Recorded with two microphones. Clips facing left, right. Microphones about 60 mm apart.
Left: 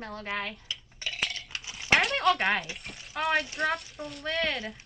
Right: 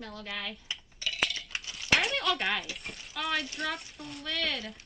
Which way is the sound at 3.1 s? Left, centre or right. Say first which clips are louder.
Left 5 dB; left.